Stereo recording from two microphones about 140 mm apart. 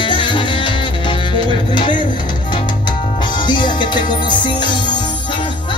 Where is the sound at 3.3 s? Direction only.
35° left (ahead or behind).